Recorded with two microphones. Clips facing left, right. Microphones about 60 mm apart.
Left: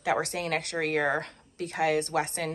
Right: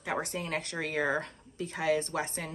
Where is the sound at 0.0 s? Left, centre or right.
Left.